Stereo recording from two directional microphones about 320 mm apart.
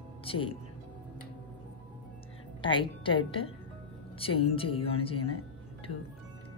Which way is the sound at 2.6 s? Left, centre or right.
Centre.